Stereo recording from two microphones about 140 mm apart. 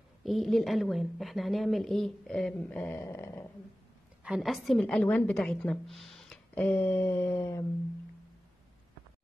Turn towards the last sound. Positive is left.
turn(degrees=20)  # may be behind; listen again after turning